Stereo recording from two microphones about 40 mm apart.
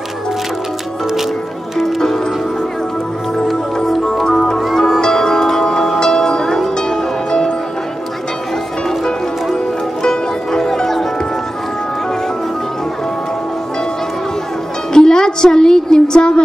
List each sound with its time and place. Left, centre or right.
3.4 s music: centre
4.3 s music: centre
10.0 s music: centre
14.9 s music: centre